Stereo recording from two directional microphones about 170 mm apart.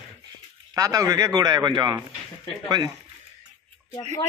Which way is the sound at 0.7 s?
20° right (ahead or behind).